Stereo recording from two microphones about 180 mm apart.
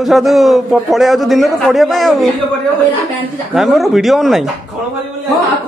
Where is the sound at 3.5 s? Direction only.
Centre (ahead or behind).